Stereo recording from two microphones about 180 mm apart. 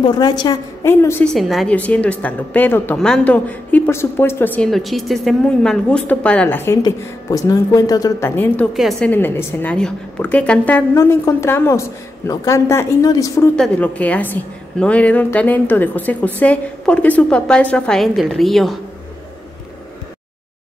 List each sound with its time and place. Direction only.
0.0 s a woman's voice: 25° left (ahead or behind)
1.3 s a woman's voice: centre (ahead or behind)
4.6 s a woman's voice: centre (ahead or behind)
8.7 s a woman's voice: centre (ahead or behind)
9.1 s a woman's voice: 10° left (ahead or behind)
13.6 s a woman's voice: 10° left (ahead or behind)